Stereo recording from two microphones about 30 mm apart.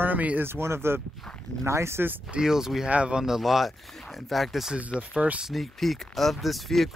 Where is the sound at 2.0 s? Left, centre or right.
Right.